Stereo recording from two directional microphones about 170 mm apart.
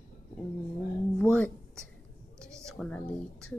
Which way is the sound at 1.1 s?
5° left (ahead or behind).